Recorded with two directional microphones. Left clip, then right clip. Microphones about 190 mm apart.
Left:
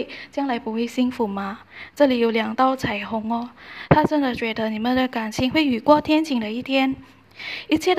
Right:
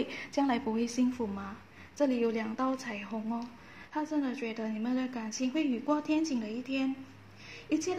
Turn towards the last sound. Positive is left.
turn(degrees=40)  # may be behind; listen again after turning